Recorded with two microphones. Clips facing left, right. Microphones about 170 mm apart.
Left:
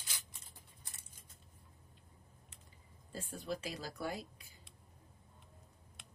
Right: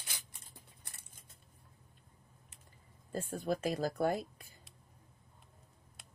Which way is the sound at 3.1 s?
50° right (ahead or behind).